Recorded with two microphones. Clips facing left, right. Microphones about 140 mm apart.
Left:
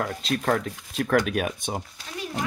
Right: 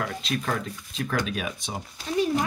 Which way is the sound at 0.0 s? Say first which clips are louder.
Left 3 dB; 40° left (ahead or behind).